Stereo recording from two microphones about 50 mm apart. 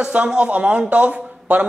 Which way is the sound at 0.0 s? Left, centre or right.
Right.